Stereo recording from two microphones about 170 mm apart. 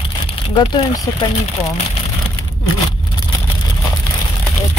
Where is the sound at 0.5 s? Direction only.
30° left (ahead or behind).